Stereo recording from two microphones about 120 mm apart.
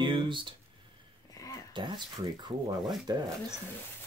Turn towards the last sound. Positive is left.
turn(degrees=-35)  # may be behind; listen again after turning